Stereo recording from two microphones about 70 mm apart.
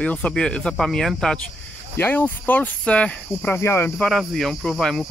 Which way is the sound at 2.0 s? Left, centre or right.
Left.